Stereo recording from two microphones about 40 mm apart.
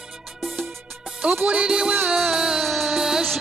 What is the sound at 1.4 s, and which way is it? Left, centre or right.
Music, right.